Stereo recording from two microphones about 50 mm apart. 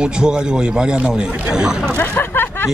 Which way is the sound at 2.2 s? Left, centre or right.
Left.